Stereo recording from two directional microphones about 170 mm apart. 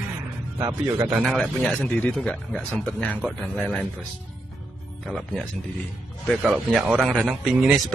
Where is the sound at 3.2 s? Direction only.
5° right (ahead or behind).